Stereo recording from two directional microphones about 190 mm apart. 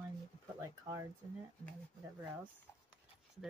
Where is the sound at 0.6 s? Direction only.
15° right (ahead or behind).